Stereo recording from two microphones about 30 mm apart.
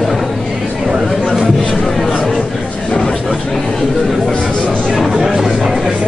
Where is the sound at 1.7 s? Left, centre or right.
Centre.